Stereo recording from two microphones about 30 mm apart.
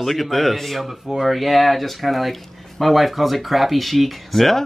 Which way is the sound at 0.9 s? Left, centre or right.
Centre.